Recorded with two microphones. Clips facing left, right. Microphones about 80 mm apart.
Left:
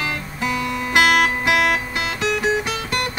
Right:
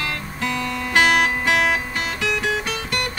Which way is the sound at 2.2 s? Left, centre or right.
Left.